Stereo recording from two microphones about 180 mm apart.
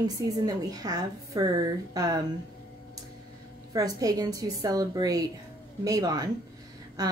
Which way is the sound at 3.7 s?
20° right (ahead or behind).